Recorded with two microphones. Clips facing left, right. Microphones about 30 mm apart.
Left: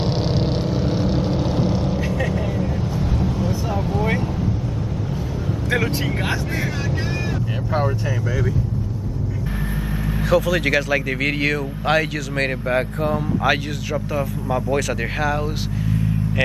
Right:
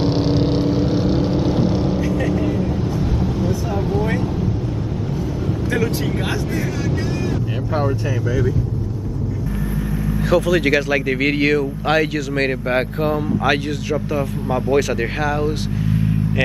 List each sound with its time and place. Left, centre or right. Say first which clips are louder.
0.0 s vehicle: right 4 dB; centre
2.0 s vehicle: right 4 dB; centre
10.3 s speech: right 2 dB; centre
12.6 s speech: right 2 dB; right
13.1 s speech: right 1 dB; centre